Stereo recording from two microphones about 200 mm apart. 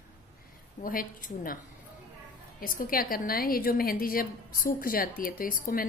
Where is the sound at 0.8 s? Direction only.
45° left (ahead or behind).